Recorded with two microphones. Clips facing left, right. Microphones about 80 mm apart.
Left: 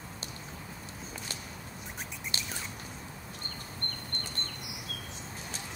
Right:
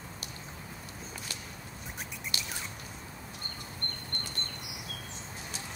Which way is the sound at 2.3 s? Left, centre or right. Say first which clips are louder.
Even; left.